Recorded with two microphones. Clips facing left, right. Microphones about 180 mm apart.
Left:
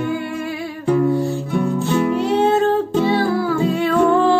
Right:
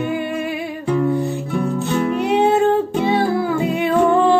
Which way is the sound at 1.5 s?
Centre (ahead or behind).